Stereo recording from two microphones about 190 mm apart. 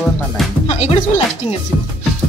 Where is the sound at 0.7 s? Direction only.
35° left (ahead or behind).